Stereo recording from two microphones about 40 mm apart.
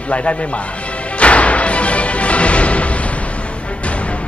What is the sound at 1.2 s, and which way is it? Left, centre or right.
Music, left.